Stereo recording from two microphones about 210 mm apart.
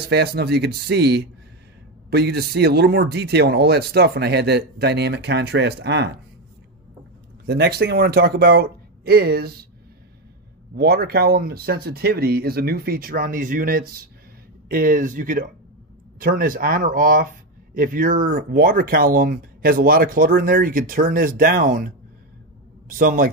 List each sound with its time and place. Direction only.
0.1 s speech: 50° right (ahead or behind)
7.4 s speech: 50° right (ahead or behind)
10.8 s speech: 50° right (ahead or behind)